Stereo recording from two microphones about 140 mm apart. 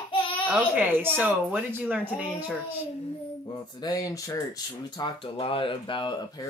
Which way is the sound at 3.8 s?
25° left (ahead or behind).